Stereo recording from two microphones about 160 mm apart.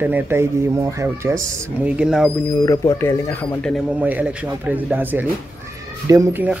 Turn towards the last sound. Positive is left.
turn(degrees=-15)  # may be behind; listen again after turning